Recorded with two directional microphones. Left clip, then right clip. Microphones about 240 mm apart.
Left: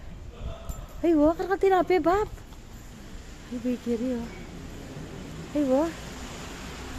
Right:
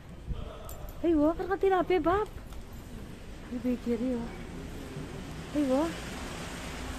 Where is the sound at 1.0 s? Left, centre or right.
Left.